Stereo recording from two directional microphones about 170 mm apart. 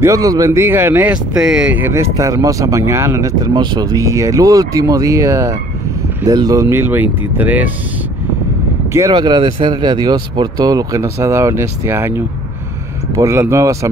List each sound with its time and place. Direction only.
0.0 s speech: 20° right (ahead or behind)
8.9 s speech: 20° right (ahead or behind)